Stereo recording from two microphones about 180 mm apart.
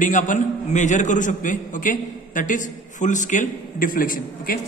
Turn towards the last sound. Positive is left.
turn(degrees=50)  # may be behind; listen again after turning